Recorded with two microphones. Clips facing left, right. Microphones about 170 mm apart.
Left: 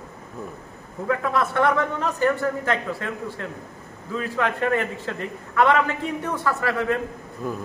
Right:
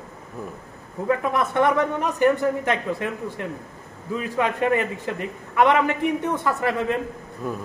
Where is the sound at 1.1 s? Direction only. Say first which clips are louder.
Right 1 dB; 15° right (ahead or behind).